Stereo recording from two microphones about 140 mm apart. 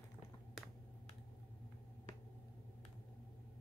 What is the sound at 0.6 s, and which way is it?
Computer keyboard, centre (ahead or behind).